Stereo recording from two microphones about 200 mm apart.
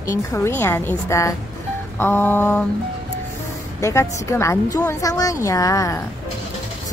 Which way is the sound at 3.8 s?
15° left (ahead or behind).